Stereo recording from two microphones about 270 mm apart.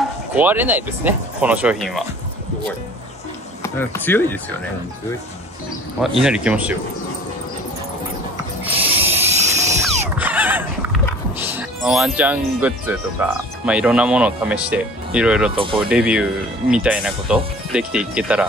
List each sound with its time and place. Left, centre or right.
0.3 s speech: centre
3.6 s speech: centre
5.9 s speech: centre
8.6 s a sound: centre
9.3 s music: right
10.1 s a sound: centre
11.3 s speech: centre
15.5 s speech: centre
15.9 s speech: centre